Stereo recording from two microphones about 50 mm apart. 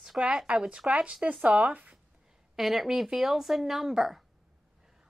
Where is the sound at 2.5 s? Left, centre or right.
Centre.